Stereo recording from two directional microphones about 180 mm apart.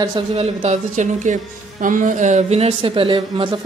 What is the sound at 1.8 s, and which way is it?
Speech, 45° right (ahead or behind).